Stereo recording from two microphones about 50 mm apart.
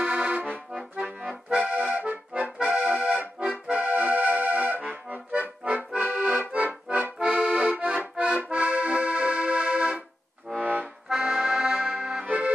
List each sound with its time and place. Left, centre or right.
0.0 s accordion: centre
0.7 s accordion: right
10.6 s accordion: right
11.1 s accordion: centre
12.3 s accordion: right